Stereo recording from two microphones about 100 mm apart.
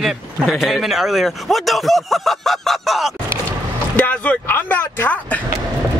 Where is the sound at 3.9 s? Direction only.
15° left (ahead or behind).